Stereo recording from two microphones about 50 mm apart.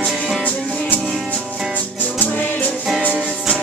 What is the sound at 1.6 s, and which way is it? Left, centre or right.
Music, right.